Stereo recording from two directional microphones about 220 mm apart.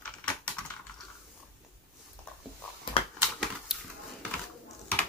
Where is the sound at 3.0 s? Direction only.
25° left (ahead or behind).